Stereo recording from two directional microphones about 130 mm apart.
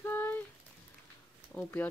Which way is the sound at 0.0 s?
15° left (ahead or behind).